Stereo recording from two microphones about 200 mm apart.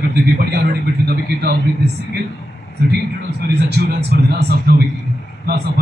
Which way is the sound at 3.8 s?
50° right (ahead or behind).